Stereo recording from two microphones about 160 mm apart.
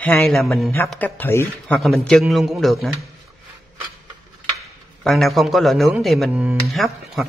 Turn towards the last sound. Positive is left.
turn(degrees=0)  # may be behind; listen again after turning